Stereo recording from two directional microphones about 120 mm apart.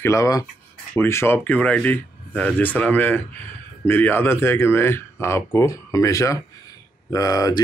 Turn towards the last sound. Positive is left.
turn(degrees=30)  # may be behind; listen again after turning